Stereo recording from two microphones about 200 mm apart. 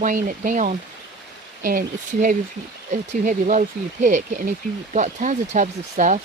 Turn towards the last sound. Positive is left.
turn(degrees=-40)  # may be behind; listen again after turning